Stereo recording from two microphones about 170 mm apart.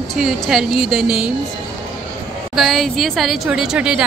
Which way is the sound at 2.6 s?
Centre (ahead or behind).